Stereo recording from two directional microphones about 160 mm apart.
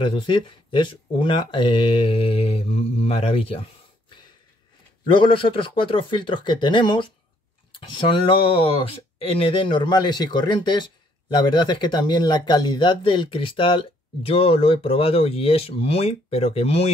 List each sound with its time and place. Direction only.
0.0 s speech: 30° left (ahead or behind)
5.0 s speech: 30° left (ahead or behind)